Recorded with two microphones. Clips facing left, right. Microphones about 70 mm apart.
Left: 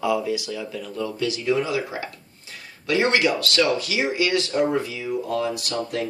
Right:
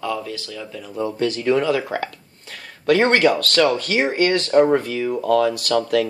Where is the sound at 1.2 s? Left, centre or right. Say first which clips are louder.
Right 5 dB; right.